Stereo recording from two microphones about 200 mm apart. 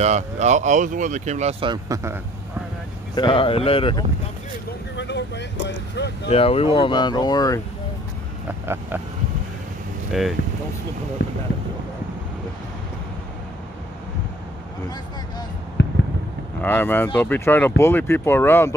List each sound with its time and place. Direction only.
0.0 s speech: 35° right (ahead or behind); by 2.1 s 20° right (ahead or behind)
3.2 s speech: 25° left (ahead or behind)
4.9 s speech: 60° left (ahead or behind)
6.3 s speech: 30° left (ahead or behind)
10.1 s speech: centre (ahead or behind)
11.2 s speech: 65° left (ahead or behind)
15.8 s a sound: 60° left (ahead or behind)
16.6 s speech: 10° left (ahead or behind)